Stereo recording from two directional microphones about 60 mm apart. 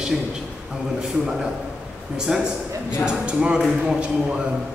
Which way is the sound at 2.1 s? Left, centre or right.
Centre.